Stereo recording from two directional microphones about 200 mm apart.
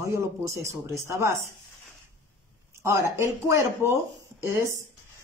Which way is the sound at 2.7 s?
15° right (ahead or behind).